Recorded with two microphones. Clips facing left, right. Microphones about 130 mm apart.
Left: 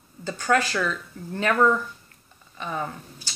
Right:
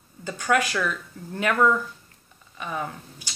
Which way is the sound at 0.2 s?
10° right (ahead or behind).